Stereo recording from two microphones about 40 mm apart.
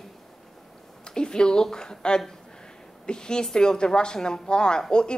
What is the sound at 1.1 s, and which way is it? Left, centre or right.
A woman's voice, centre.